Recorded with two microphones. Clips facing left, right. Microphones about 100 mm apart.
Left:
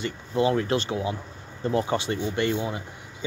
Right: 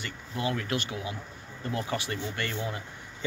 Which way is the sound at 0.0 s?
25° left (ahead or behind).